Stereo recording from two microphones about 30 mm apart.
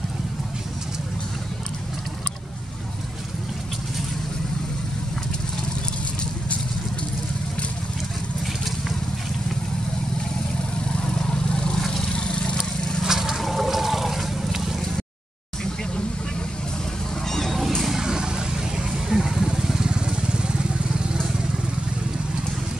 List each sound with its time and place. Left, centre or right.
11.2 s vehicle: left
13.0 s vehicle: centre
13.4 s toilet flush: centre
17.5 s a sound: centre
17.8 s vehicle: centre
18.9 s vehicle: centre
19.9 s vehicle: right